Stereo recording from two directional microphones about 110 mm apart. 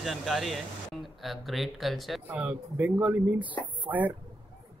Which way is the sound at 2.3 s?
15° right (ahead or behind).